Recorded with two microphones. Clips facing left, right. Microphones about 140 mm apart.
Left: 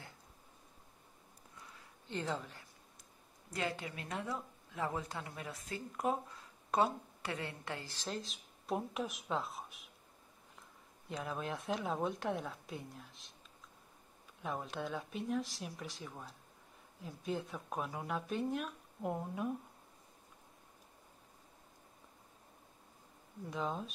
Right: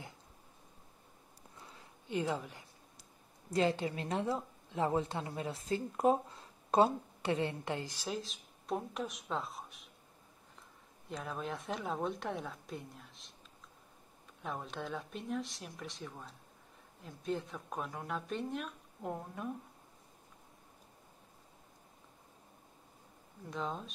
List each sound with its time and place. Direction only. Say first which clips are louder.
2.0 s a woman's voice: right 4 dB; 10° right (ahead or behind)
3.4 s a woman's voice: right 8 dB; 30° right (ahead or behind); by 9.8 s centre (ahead or behind)
11.1 s a woman's voice: even; centre (ahead or behind)
14.4 s a woman's voice: left 1 dB; centre (ahead or behind)
23.5 s a woman's voice: even; centre (ahead or behind)